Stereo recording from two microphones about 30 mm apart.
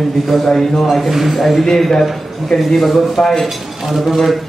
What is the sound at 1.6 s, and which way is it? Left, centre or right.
A man's voice, centre.